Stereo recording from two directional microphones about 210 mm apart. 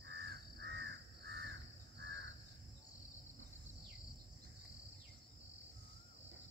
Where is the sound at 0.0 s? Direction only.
50° right (ahead or behind).